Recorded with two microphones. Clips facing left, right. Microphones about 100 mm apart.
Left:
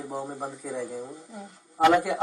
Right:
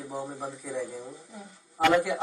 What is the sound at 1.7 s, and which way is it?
Speech, 20° left (ahead or behind).